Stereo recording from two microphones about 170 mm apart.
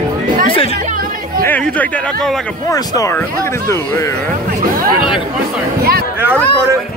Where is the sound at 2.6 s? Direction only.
20° left (ahead or behind).